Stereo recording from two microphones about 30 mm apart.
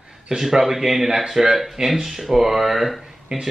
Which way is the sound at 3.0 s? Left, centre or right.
Centre.